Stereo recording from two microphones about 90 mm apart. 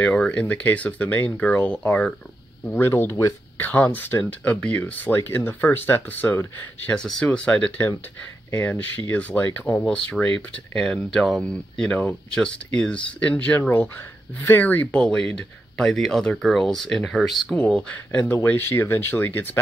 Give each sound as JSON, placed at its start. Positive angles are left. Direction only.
{"t": 0.0, "sound": "speech", "side_deg": 15}
{"t": 2.6, "sound": "speech", "side_deg": 25}
{"t": 3.5, "sound": "speech", "side_deg": 20}
{"t": 6.9, "sound": "speech", "side_deg": 10}
{"t": 17.8, "sound": "speech", "side_deg": 15}